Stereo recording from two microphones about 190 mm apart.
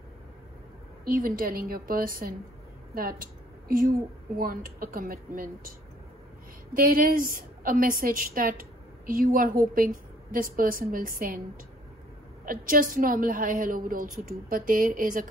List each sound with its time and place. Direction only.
1.0 s a woman's voice: 50° right (ahead or behind)
6.7 s a woman's voice: 50° right (ahead or behind)
12.4 s a woman's voice: 45° right (ahead or behind)